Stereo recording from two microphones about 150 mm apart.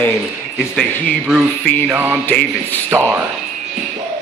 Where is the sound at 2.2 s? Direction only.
10° left (ahead or behind).